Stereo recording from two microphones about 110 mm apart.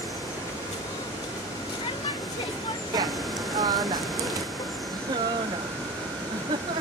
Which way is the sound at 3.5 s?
35° right (ahead or behind).